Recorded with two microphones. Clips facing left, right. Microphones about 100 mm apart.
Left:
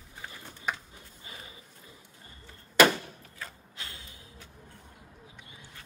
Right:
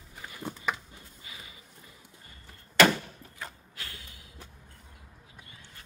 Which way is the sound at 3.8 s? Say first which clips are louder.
Even; 25° left (ahead or behind).